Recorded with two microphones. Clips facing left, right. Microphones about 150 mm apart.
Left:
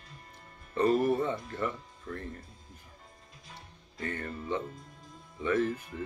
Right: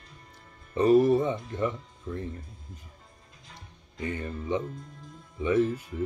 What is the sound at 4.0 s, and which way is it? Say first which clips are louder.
Speech: right 3 dB; 15° right (ahead or behind).